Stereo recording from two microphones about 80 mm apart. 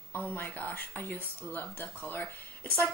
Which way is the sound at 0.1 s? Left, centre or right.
Left.